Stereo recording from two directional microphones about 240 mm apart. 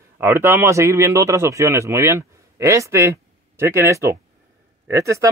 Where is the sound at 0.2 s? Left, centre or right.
Centre.